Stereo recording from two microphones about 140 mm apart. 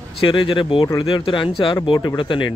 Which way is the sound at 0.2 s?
35° left (ahead or behind).